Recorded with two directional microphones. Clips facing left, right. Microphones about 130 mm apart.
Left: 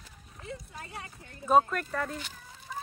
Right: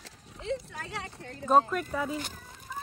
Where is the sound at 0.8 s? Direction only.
90° right.